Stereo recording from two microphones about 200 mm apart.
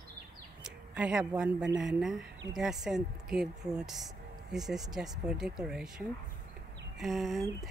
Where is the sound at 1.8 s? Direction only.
Centre (ahead or behind).